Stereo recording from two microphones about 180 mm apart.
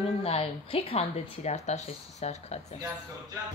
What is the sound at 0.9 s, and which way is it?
Speech, 40° left (ahead or behind).